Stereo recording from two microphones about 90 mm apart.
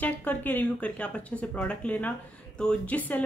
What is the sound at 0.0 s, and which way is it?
A woman's voice, 20° left (ahead or behind).